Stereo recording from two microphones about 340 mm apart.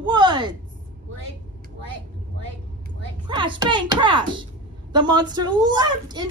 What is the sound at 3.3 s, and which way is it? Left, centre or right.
A child's voice, centre.